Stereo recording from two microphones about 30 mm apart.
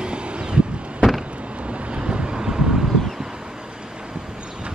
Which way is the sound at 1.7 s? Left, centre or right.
Right.